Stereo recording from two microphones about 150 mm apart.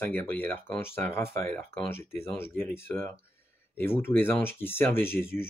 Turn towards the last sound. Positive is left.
turn(degrees=15)  # may be behind; listen again after turning